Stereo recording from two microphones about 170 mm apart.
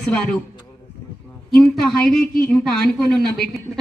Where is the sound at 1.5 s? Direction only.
5° left (ahead or behind).